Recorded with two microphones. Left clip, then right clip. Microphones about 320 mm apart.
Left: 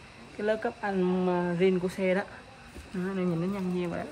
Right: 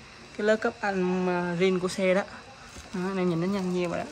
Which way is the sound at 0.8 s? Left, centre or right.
Right.